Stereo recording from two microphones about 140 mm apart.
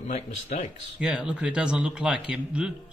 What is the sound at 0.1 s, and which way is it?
Speech, 50° left (ahead or behind).